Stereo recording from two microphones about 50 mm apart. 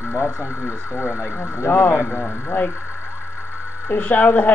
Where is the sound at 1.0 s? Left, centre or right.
Right.